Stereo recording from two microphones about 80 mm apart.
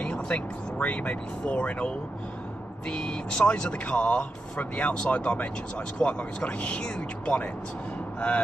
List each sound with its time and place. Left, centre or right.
0.0 s speech: centre
2.9 s speech: centre